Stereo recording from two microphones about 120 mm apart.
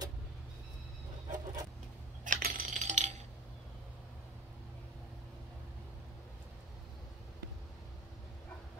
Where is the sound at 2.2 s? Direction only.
85° right.